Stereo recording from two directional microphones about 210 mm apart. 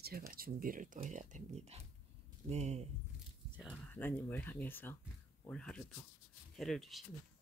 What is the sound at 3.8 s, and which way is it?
Speech, 10° left (ahead or behind).